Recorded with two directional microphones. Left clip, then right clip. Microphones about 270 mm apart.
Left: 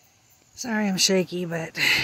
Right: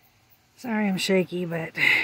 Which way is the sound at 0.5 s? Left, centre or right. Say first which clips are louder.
Left 2 dB; centre.